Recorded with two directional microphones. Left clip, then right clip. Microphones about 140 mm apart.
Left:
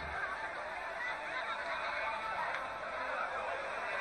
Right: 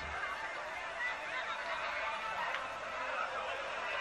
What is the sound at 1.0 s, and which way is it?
Fowl, 20° right (ahead or behind).